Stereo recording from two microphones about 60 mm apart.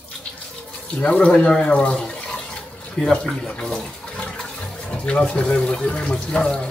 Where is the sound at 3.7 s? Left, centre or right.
Centre.